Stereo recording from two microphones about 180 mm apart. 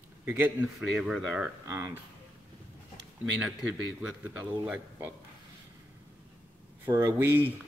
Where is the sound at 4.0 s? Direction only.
10° right (ahead or behind).